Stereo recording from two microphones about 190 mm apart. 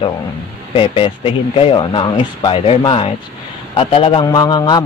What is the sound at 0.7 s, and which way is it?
A man's voice, 25° left (ahead or behind).